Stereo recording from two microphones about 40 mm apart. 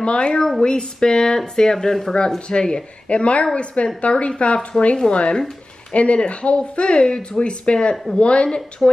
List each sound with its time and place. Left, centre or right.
0.0 s speech: left
0.4 s speech: centre
2.1 s speech: left
4.7 s speech: centre
5.1 s speech: left
7.9 s speech: centre
8.2 s speech: left